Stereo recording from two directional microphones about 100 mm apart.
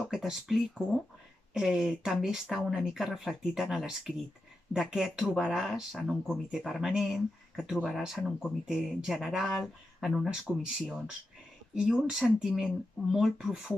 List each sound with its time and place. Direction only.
0.1 s speech: 5° right (ahead or behind)